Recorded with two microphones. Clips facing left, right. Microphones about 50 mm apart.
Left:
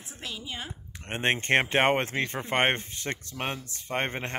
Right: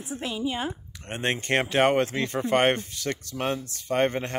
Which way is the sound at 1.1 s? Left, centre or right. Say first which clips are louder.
Left 1 dB; left.